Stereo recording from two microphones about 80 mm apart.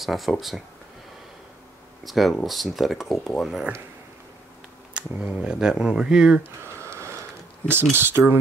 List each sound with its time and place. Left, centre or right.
0.0 s speech: centre
2.0 s speech: centre
4.9 s speech: centre
6.6 s a sound: right
7.9 s speech: right